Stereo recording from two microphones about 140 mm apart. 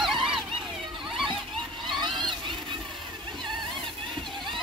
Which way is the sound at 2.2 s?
35° right (ahead or behind).